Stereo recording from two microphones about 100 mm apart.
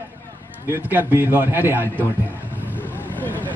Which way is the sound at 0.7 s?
25° right (ahead or behind).